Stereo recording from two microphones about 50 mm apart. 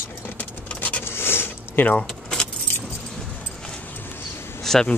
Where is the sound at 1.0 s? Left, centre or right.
Left.